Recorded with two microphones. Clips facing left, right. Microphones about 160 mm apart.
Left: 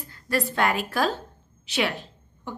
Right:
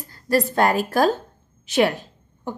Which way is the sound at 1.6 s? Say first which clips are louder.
Right 7 dB; 45° right (ahead or behind).